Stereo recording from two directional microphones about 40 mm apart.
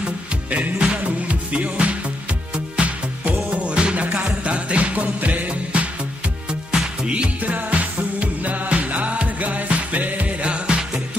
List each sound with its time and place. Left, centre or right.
0.5 s music: right
5.5 s music: right
7.4 s music: right
10.4 s music: right